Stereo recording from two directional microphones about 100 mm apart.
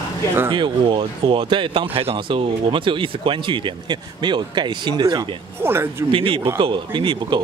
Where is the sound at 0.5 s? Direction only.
55° right (ahead or behind).